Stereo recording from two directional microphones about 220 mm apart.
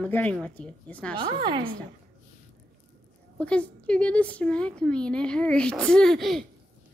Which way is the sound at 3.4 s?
5° left (ahead or behind).